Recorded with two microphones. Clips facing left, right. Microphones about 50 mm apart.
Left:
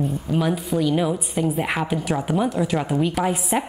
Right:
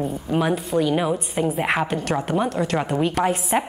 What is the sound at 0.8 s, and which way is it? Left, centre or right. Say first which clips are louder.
A woman's voice: even; centre.